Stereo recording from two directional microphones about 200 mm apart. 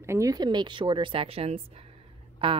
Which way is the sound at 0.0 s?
15° right (ahead or behind).